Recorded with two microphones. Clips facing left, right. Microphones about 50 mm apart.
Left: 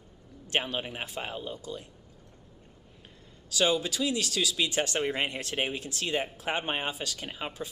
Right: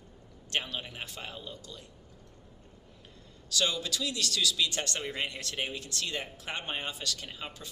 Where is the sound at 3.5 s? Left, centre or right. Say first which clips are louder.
Left 5 dB; centre.